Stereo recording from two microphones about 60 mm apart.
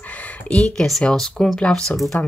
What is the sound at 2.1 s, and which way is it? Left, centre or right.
Speech, left.